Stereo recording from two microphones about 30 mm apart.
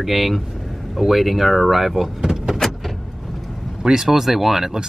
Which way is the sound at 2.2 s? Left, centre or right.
Centre.